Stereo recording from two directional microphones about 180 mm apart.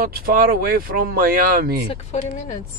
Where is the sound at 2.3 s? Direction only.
45° left (ahead or behind).